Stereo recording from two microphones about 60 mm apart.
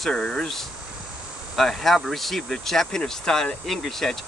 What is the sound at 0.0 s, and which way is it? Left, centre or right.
Speech, centre.